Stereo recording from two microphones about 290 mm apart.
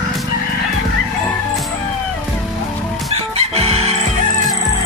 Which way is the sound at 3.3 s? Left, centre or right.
Right.